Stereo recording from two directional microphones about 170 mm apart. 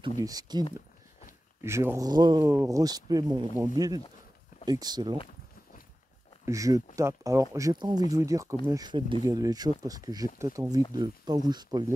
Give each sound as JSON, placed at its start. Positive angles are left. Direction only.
{"t": 0.2, "sound": "speech", "side_deg": -20}
{"t": 6.4, "sound": "speech", "side_deg": -20}